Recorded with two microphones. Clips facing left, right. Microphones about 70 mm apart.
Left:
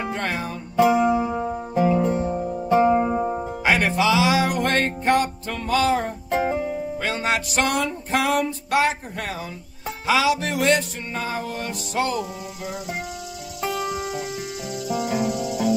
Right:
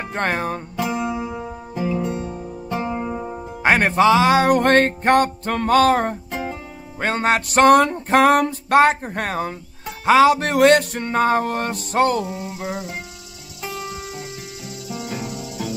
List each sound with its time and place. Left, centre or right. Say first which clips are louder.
0.1 s music: right 4 dB; right
0.7 s music: left 9 dB; left
3.6 s music: right 5 dB; right
6.3 s music: left 6 dB; left
7.0 s music: right 7 dB; right
12.3 s a sound: right 4 dB; right
13.6 s music: left 4 dB; left